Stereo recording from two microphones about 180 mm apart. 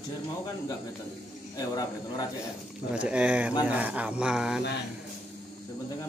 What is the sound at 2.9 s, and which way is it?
A man's voice, 5° right (ahead or behind).